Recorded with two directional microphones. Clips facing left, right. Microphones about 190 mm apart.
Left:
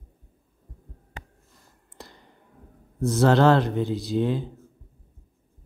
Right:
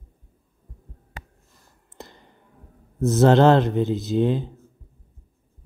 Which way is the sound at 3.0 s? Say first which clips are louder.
Right 3 dB; 25° right (ahead or behind).